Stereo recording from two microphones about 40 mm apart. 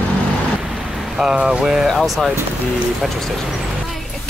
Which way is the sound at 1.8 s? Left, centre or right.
Centre.